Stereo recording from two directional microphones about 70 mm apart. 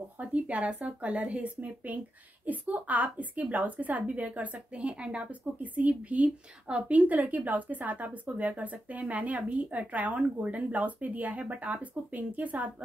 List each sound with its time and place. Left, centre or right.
0.2 s a woman's voice: centre